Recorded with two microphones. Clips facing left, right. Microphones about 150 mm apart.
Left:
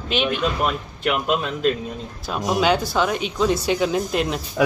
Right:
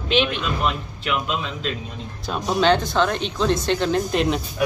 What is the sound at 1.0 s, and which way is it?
Speech, 50° left (ahead or behind).